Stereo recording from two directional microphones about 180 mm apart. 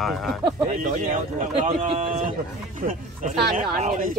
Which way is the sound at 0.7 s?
45° right (ahead or behind).